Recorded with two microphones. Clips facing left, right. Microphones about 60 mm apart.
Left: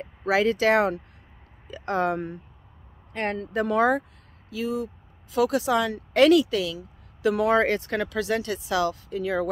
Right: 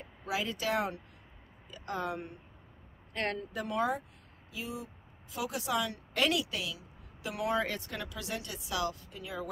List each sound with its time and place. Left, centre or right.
0.0 s speech: left
1.7 s speech: left
3.1 s speech: left
3.3 s speech: left
7.2 s speech: left